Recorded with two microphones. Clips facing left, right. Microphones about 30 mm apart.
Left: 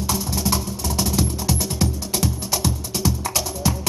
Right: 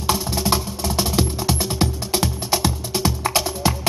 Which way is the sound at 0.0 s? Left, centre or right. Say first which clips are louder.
Right 2 dB; right.